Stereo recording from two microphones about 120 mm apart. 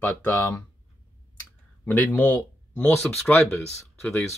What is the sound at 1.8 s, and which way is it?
Speech, 15° left (ahead or behind).